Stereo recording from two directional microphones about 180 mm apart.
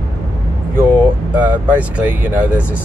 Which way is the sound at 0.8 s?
10° right (ahead or behind).